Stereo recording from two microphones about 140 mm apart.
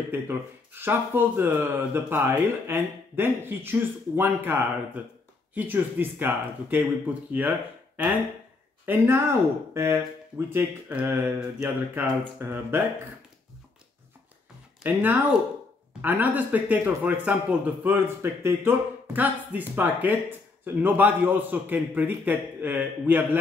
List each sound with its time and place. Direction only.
0.1 s a man's voice: 15° right (ahead or behind)
14.8 s a man's voice: 15° right (ahead or behind)